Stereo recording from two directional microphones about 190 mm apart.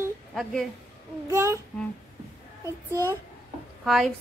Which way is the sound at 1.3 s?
15° right (ahead or behind).